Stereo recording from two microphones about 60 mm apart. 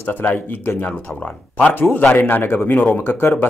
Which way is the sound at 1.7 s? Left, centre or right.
Left.